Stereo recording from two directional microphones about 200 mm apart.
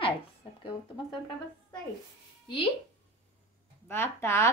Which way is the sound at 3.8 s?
10° left (ahead or behind).